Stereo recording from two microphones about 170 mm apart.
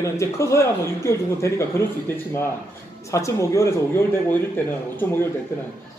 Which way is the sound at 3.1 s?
20° left (ahead or behind).